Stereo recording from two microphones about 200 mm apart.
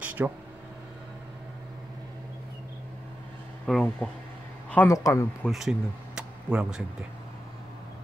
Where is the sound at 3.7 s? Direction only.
5° left (ahead or behind).